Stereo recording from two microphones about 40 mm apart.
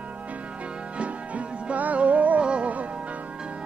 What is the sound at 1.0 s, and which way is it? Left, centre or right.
Music, right.